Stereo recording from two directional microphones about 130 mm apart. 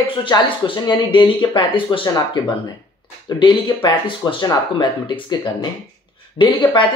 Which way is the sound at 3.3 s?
35° left (ahead or behind).